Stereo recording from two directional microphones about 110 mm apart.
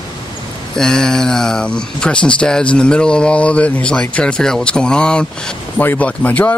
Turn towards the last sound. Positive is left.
turn(degrees=15)  # may be behind; listen again after turning